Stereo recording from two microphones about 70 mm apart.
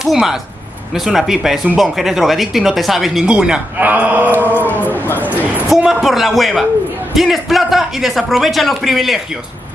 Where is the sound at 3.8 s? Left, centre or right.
Right.